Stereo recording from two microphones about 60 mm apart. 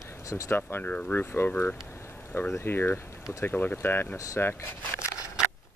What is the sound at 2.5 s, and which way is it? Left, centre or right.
Speech, left.